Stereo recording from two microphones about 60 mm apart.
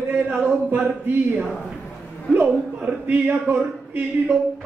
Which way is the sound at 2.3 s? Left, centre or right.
Right.